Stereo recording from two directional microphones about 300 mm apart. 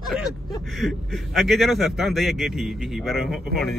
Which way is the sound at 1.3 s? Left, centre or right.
Centre.